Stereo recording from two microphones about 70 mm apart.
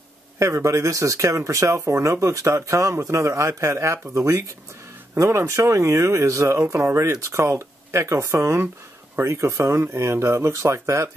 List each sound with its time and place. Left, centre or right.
0.4 s speech: right